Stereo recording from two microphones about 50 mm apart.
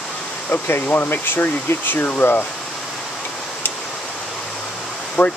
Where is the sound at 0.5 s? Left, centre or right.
Left.